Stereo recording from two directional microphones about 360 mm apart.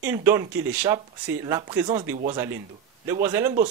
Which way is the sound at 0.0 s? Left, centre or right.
Centre.